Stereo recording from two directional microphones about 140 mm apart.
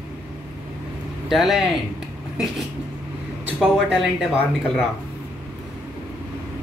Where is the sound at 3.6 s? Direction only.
5° right (ahead or behind).